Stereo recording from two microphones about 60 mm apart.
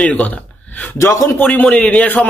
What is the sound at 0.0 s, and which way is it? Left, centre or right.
Speech, centre.